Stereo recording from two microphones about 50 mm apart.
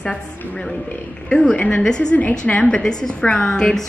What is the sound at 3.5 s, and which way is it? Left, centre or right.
Speech, centre.